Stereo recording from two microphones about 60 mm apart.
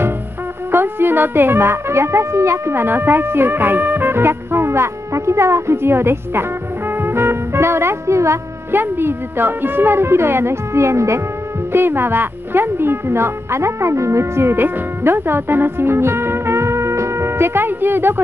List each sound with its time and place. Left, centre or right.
0.7 s speech: right
8.7 s a woman's voice: right
11.7 s speech: right